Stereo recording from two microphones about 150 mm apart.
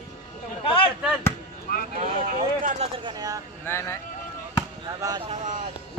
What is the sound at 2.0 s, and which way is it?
Speech, 50° right (ahead or behind).